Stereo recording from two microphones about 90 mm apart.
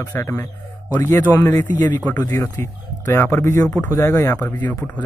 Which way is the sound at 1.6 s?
20° left (ahead or behind).